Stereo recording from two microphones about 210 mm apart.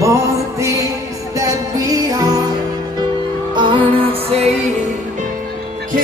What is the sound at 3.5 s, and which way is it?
Music, 25° right (ahead or behind).